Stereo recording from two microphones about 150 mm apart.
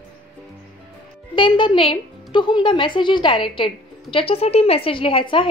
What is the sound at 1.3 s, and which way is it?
A woman's voice, 30° left (ahead or behind).